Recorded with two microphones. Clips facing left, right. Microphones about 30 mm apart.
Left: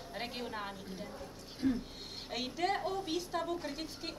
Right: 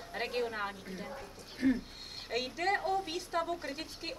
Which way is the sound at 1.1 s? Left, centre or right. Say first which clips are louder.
Right 2 dB; right.